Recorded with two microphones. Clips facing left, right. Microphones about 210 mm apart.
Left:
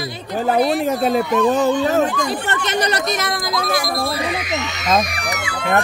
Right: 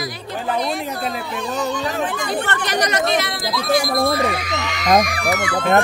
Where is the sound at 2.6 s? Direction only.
30° left (ahead or behind).